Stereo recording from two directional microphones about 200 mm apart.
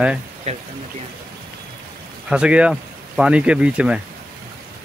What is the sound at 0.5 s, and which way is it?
Speech, 30° right (ahead or behind).